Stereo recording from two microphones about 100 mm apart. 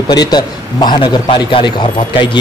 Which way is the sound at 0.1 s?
45° left (ahead or behind).